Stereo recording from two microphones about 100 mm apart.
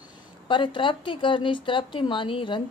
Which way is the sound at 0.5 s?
55° left (ahead or behind).